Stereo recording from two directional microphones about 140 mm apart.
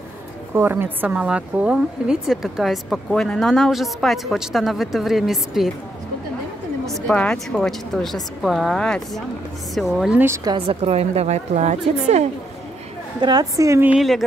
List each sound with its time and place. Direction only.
0.6 s a woman's voice: 15° right (ahead or behind)
7.1 s a woman's voice: 5° left (ahead or behind)
10.2 s a woman's voice: 20° right (ahead or behind)
10.5 s a woman's voice: 45° right (ahead or behind)
13.2 s a woman's voice: 30° right (ahead or behind)
13.8 s a woman's voice: centre (ahead or behind)